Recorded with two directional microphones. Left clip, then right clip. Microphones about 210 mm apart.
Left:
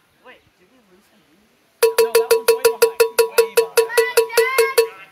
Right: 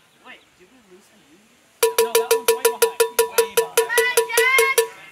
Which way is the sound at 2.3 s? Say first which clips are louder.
Left 3 dB; 30° left (ahead or behind).